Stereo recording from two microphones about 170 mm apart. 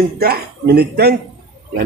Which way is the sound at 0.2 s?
65° right (ahead or behind).